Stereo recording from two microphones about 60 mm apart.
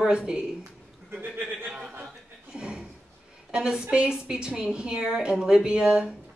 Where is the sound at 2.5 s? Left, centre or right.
Centre.